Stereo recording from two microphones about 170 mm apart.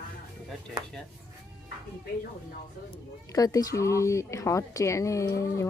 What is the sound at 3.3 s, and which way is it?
Speech, 20° left (ahead or behind).